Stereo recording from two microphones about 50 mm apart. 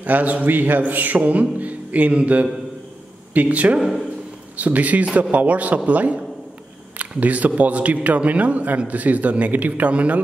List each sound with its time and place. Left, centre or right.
0.0 s a man's voice: right